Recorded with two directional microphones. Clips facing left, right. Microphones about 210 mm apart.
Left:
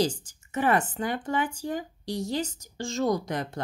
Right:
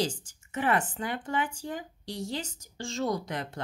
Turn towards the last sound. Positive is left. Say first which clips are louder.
# left 4 dB
turn(degrees=40)  # may be behind; listen again after turning